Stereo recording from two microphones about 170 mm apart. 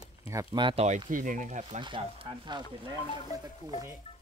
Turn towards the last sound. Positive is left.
turn(degrees=-20)  # may be behind; listen again after turning